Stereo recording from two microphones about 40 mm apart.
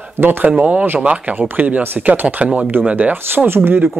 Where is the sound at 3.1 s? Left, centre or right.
Right.